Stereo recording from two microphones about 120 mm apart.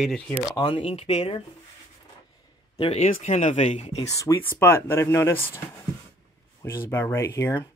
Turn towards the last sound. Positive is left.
turn(degrees=25)  # may be behind; listen again after turning